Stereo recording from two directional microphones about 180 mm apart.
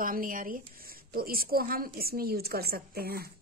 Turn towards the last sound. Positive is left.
turn(degrees=-60)  # may be behind; listen again after turning